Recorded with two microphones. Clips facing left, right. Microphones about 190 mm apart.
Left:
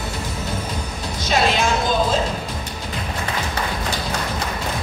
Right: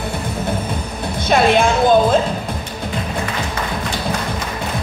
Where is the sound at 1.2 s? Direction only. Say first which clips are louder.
Right 6 dB; 55° right (ahead or behind).